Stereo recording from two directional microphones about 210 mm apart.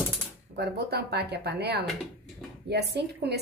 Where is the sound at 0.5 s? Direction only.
50° right (ahead or behind).